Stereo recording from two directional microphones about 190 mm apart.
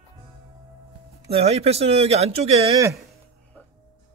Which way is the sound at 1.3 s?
30° right (ahead or behind).